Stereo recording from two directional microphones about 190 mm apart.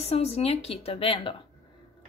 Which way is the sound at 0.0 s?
35° left (ahead or behind).